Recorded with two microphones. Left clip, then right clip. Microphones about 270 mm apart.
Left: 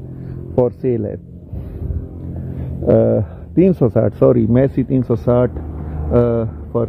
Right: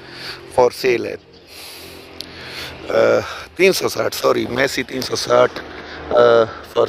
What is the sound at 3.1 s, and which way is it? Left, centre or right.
Speech, centre.